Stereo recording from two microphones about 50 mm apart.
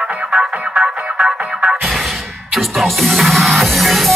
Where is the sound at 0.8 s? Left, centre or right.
Right.